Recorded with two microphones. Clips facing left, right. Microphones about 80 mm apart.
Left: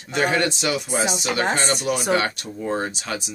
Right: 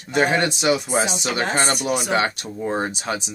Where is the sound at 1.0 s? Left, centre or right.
Left.